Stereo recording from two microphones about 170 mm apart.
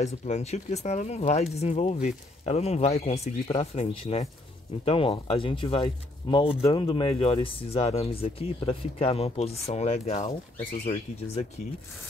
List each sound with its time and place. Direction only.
0.0 s speech: 40° left (ahead or behind)